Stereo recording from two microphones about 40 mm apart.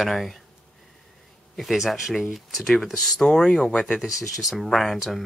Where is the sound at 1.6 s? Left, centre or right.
Centre.